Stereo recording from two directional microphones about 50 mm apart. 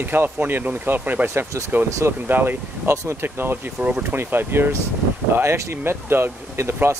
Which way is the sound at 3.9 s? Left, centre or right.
Right.